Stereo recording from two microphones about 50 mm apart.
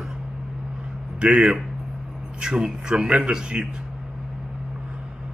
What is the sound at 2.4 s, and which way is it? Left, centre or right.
Speech, centre.